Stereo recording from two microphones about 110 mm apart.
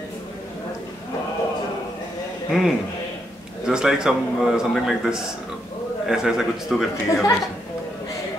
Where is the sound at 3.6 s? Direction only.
5° right (ahead or behind).